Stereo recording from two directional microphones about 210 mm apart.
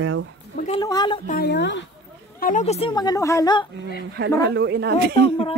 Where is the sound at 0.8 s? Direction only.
20° left (ahead or behind).